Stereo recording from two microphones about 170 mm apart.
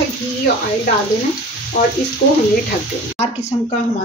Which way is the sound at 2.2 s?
70° left (ahead or behind).